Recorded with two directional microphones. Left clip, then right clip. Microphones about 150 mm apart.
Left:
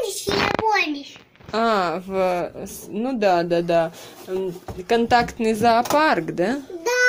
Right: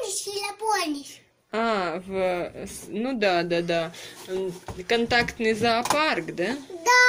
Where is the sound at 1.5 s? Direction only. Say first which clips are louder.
Left 5 dB; 5° left (ahead or behind).